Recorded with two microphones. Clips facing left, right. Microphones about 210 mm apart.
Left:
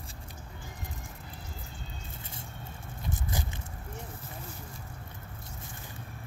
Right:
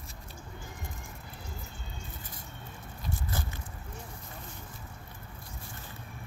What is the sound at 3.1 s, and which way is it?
Vehicle, 15° left (ahead or behind).